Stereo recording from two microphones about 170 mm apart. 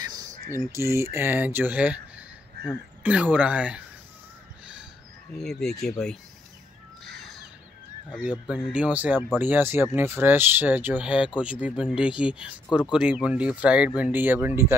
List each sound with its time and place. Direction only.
0.0 s a sound: 20° right (ahead or behind)
0.9 s speech: 15° right (ahead or behind)
5.4 s speech: centre (ahead or behind)
8.2 s speech: 10° right (ahead or behind)
12.6 s speech: 25° left (ahead or behind)
12.9 s speech: 5° right (ahead or behind)